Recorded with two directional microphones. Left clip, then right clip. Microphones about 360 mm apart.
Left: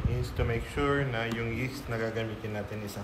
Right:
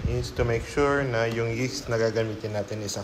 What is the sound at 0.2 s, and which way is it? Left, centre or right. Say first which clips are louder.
Speech: right 7 dB; centre.